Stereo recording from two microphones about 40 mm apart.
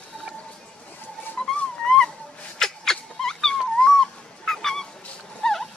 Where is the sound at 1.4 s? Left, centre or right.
Centre.